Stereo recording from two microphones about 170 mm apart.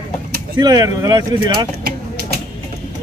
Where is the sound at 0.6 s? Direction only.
20° right (ahead or behind).